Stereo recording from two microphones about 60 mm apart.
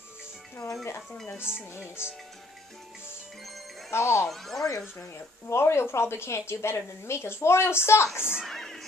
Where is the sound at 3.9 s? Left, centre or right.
Left.